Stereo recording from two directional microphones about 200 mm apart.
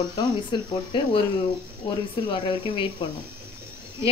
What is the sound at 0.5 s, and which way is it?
Speech, 25° left (ahead or behind).